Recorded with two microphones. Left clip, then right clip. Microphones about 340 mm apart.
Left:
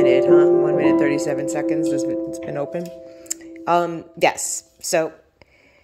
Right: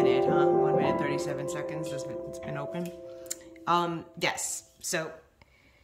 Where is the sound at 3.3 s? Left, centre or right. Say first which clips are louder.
Left 8 dB; centre.